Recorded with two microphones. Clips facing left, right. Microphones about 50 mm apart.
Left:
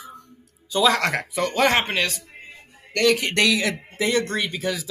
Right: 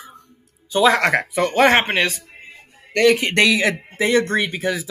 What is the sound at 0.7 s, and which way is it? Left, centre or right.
Speech, right.